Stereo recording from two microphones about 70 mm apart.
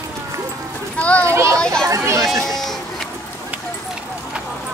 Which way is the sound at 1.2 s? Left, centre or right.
Right.